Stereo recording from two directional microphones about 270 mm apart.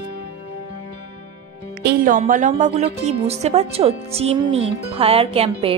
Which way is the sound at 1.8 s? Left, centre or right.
Right.